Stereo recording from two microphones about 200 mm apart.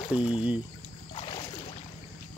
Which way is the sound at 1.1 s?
25° left (ahead or behind).